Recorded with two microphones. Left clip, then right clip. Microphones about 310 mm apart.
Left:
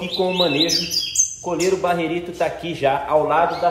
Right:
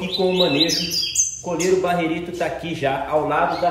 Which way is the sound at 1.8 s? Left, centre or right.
Centre.